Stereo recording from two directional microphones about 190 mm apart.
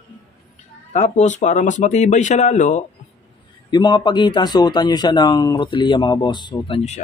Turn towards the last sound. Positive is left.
turn(degrees=25)  # may be behind; listen again after turning